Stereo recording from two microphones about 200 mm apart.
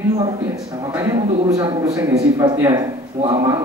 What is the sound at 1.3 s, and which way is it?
Speech, 30° right (ahead or behind).